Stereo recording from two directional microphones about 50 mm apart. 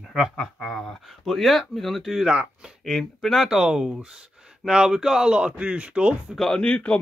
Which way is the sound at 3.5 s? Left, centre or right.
Centre.